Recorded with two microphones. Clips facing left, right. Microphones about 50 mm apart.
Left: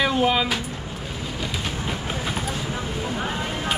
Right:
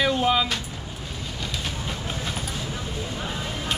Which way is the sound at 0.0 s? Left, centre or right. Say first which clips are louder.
Left 1 dB; centre.